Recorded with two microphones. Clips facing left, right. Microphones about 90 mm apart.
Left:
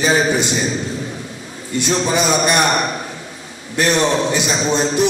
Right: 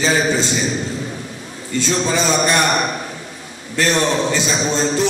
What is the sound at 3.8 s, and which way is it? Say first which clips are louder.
A man's voice: left 1 dB; 15° left (ahead or behind).